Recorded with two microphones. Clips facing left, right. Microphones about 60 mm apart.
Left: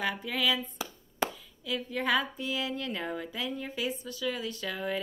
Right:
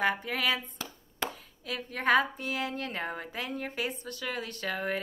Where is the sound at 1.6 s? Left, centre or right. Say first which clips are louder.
Left 2 dB; right.